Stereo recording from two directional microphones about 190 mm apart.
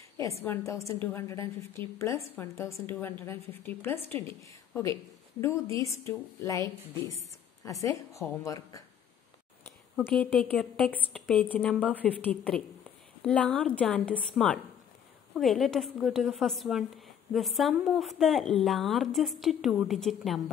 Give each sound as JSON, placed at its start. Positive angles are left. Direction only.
{"t": 0.2, "sound": "a woman's voice", "side_deg": 15}
{"t": 7.8, "sound": "a woman's voice", "side_deg": 15}
{"t": 9.9, "sound": "a woman's voice", "side_deg": 5}